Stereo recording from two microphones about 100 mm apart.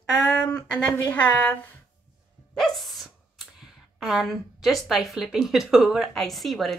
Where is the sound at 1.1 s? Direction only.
15° left (ahead or behind).